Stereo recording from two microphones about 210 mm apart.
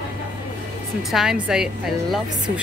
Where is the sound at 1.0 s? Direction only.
Centre (ahead or behind).